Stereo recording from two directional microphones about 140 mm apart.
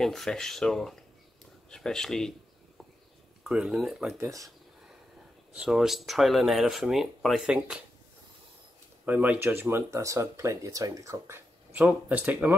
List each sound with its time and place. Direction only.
0.0 s speech: 5° left (ahead or behind)
3.4 s speech: 5° right (ahead or behind)
4.2 s speech: 25° right (ahead or behind)
5.5 s speech: 5° right (ahead or behind)
9.0 s speech: 10° right (ahead or behind)